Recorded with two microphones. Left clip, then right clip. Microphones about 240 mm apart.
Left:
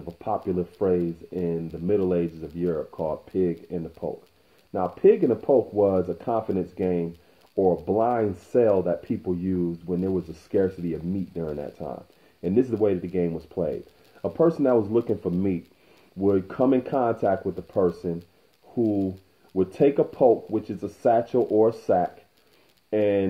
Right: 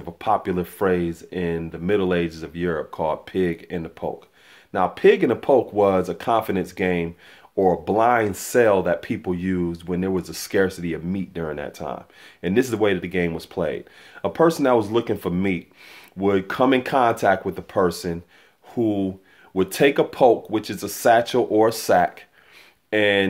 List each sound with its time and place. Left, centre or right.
0.0 s speech: right